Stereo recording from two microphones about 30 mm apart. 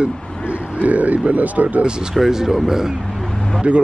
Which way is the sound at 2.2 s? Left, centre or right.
Centre.